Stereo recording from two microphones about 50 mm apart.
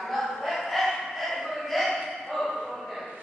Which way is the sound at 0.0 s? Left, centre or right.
Centre.